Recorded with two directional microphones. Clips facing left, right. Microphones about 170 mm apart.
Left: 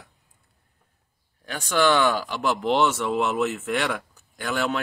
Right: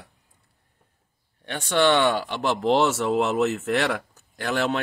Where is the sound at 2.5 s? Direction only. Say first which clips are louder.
Right 2 dB; 40° right (ahead or behind).